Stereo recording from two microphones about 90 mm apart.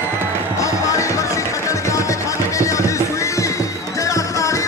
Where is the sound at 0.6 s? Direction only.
35° left (ahead or behind).